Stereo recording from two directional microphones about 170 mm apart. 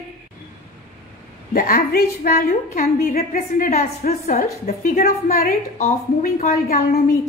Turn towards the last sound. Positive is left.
turn(degrees=60)  # may be behind; listen again after turning